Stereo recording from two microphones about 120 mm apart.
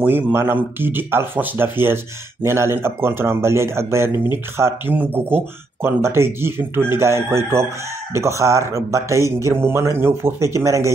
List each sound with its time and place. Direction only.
0.0 s speech: 20° right (ahead or behind)